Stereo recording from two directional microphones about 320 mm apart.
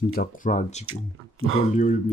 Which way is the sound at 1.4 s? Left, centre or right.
Right.